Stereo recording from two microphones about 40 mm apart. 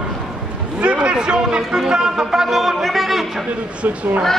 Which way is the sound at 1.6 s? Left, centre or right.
Centre.